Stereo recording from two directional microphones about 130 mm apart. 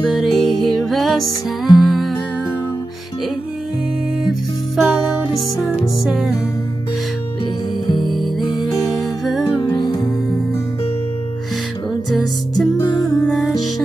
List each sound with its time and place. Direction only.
0.0 s music: centre (ahead or behind)
4.2 s music: centre (ahead or behind)
8.0 s music: centre (ahead or behind)
9.8 s music: 35° left (ahead or behind)
12.1 s music: centre (ahead or behind)